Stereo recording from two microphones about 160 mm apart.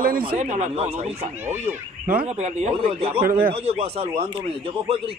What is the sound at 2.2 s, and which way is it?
Speech, 45° right (ahead or behind).